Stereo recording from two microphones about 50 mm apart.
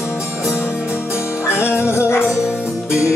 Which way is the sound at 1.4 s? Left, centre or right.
Left.